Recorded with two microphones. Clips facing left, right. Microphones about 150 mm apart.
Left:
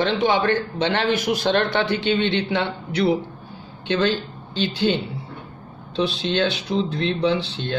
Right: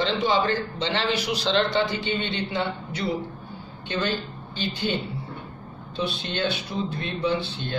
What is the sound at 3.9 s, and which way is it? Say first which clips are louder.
Speech: left 6 dB; 90° left.